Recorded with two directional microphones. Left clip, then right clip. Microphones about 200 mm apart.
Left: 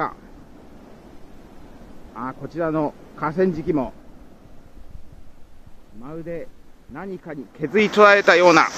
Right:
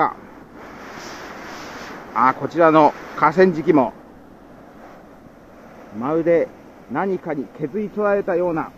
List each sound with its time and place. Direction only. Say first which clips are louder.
2.1 s speech: right 12 dB; 15° right (ahead or behind)
6.0 s speech: right 15 dB; 5° right (ahead or behind)
8.0 s speech: left 7 dB; 20° left (ahead or behind)